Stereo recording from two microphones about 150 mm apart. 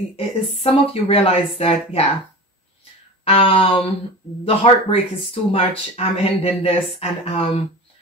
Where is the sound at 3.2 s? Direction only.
40° left (ahead or behind).